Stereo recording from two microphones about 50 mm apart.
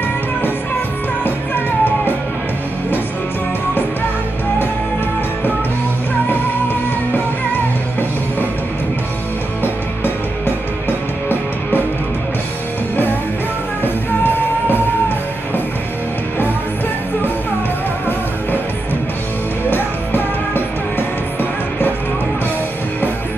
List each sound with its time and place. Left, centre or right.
1.2 s music: left
9.6 s music: left
13.8 s music: left
19.7 s music: left